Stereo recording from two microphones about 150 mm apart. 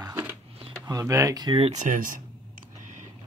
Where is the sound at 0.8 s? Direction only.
20° right (ahead or behind).